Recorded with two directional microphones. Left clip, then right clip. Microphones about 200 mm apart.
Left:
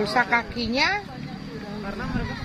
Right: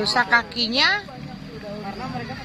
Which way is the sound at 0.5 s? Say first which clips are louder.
Right 4 dB; 20° right (ahead or behind).